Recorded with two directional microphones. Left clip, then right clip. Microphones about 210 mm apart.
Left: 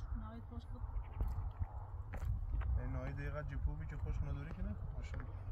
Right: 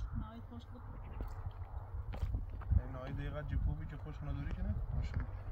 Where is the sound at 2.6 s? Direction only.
25° left (ahead or behind).